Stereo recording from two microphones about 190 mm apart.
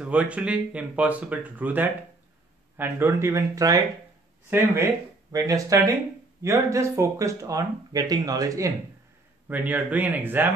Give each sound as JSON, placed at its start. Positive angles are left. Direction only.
{"t": 0.0, "sound": "speech", "side_deg": -5}
{"t": 5.3, "sound": "speech", "side_deg": -15}